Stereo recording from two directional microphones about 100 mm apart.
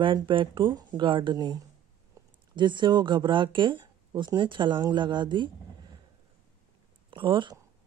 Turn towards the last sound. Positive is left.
turn(degrees=-55)  # may be behind; listen again after turning